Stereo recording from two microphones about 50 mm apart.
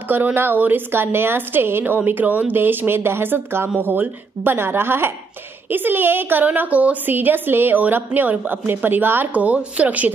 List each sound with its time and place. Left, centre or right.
0.1 s a woman's voice: right
2.0 s a woman's voice: right
7.2 s a woman's voice: right
9.3 s a woman's voice: right